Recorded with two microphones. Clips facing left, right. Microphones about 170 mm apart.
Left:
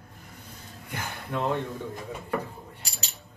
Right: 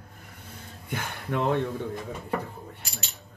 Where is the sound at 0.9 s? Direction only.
60° right (ahead or behind).